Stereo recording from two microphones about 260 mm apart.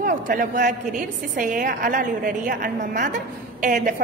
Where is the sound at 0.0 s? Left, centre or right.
Right.